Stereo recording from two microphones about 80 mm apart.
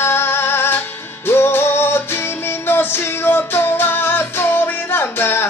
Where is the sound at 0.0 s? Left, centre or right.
Left.